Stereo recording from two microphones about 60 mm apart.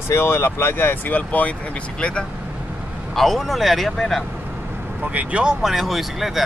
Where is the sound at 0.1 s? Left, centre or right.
Left.